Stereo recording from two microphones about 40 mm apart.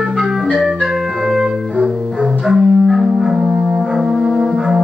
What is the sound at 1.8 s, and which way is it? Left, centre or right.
Double bass, centre.